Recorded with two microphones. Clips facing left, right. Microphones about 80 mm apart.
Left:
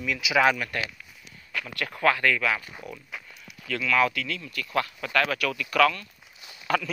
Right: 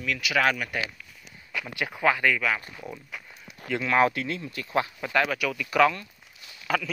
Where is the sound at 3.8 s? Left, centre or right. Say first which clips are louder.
Right 1 dB; right.